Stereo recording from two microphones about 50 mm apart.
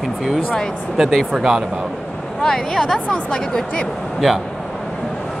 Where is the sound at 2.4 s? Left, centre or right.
Centre.